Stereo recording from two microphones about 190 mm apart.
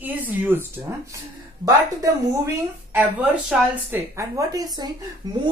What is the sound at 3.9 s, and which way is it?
Speech, 15° right (ahead or behind).